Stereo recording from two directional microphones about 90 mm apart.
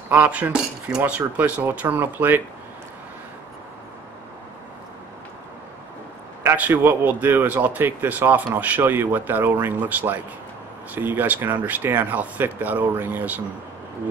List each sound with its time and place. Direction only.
0.1 s speech: 20° right (ahead or behind)
6.4 s speech: 20° right (ahead or behind)